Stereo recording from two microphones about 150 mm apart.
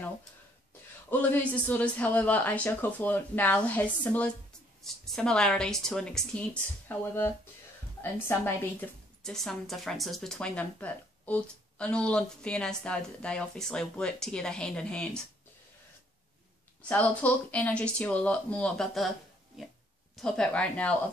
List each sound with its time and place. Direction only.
1.1 s speech: 10° left (ahead or behind)
16.9 s speech: 10° left (ahead or behind)